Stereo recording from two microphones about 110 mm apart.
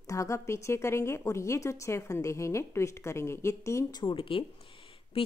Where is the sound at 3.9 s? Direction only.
50° left (ahead or behind).